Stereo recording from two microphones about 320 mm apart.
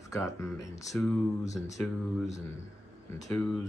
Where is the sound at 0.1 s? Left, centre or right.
Centre.